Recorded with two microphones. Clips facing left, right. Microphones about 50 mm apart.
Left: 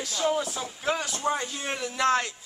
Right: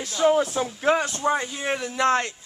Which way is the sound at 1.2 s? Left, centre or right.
Centre.